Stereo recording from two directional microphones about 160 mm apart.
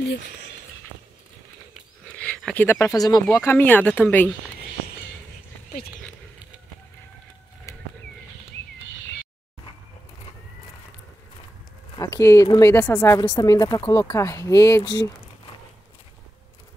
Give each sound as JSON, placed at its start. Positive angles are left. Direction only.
{"t": 2.1, "sound": "speech", "side_deg": 10}
{"t": 3.3, "sound": "speech", "side_deg": 15}
{"t": 7.7, "sound": "bird", "side_deg": 20}
{"t": 12.0, "sound": "speech", "side_deg": 15}